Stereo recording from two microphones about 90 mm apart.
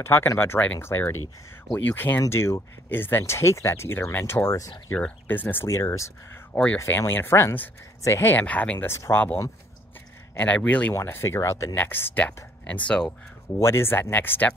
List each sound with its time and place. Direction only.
0.0 s speech: 25° left (ahead or behind)
4.9 s speech: 20° left (ahead or behind)
6.5 s speech: 15° left (ahead or behind)
7.0 s speech: 30° left (ahead or behind)
8.5 s speech: 15° left (ahead or behind)
8.7 s speech: 30° left (ahead or behind)
10.3 s speech: 15° left (ahead or behind); by 11.7 s 35° left (ahead or behind)
11.7 s speech: 20° left (ahead or behind)
13.6 s speech: 30° left (ahead or behind)